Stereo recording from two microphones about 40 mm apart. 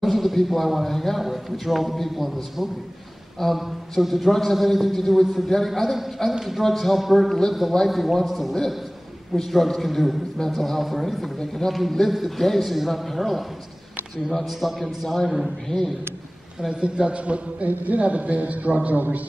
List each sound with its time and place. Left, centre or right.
0.0 s a man's voice: centre
16.8 s a man's voice: right
18.9 s a man's voice: right